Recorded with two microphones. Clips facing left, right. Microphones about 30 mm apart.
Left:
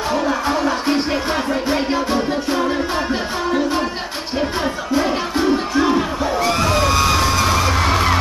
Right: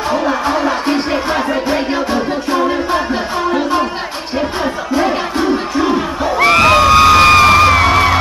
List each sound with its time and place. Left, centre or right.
0.5 s music: centre
4.9 s music: centre
6.4 s a sound: right
7.8 s music: right